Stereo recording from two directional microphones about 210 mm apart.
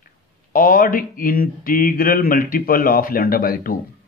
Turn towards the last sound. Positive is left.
turn(degrees=45)  # may be behind; listen again after turning